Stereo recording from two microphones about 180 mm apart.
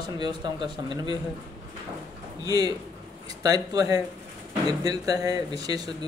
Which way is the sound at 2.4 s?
20° right (ahead or behind).